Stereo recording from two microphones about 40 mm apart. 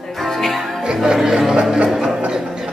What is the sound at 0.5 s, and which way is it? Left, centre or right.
Music, centre.